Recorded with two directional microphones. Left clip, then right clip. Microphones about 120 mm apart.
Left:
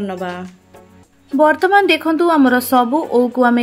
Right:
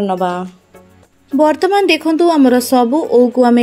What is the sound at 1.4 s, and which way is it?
Speech, 60° right (ahead or behind).